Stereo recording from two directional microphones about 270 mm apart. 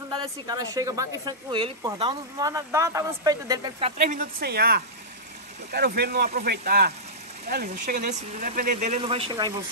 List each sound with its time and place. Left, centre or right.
0.1 s speech: centre
4.1 s speech: right